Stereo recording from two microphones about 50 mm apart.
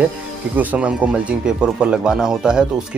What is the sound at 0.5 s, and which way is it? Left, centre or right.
Speech, right.